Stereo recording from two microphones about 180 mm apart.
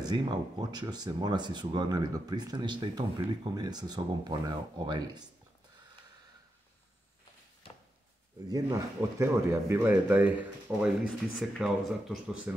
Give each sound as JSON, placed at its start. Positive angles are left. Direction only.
{"t": 0.0, "sound": "speech", "side_deg": -25}
{"t": 8.5, "sound": "speech", "side_deg": -20}